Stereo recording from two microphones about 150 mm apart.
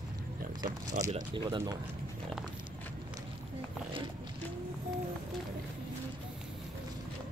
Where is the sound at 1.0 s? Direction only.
50° right (ahead or behind).